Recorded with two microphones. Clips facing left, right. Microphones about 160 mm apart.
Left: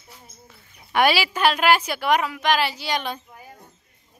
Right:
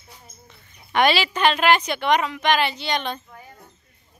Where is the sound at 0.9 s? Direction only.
10° left (ahead or behind).